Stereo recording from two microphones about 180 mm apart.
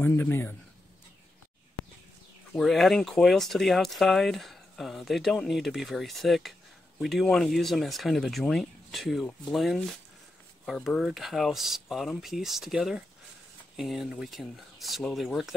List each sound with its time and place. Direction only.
0.0 s speech: 10° left (ahead or behind)
2.5 s speech: centre (ahead or behind)